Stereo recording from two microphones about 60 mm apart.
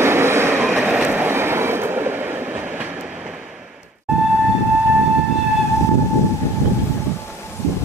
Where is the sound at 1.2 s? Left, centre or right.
Right.